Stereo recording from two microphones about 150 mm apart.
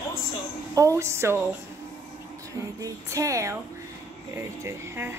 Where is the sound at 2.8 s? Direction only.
20° right (ahead or behind).